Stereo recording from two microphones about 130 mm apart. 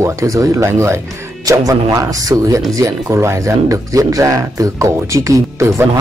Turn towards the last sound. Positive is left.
turn(degrees=-25)  # may be behind; listen again after turning